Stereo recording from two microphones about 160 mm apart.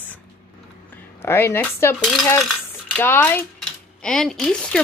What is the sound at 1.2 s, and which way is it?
Speech, 15° left (ahead or behind).